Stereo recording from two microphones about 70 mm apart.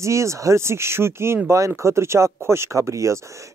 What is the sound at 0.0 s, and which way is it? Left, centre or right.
Speech, right.